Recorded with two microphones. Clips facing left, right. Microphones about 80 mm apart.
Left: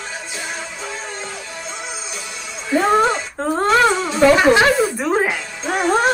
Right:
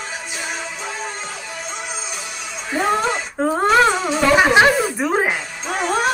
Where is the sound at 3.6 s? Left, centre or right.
Centre.